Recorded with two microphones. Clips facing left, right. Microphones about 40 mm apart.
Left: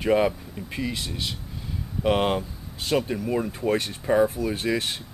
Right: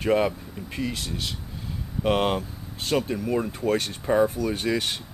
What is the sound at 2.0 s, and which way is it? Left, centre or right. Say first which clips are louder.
Speech: left 1 dB; centre.